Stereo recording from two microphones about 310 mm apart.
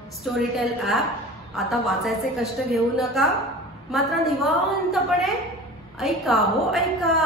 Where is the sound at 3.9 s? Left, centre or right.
Centre.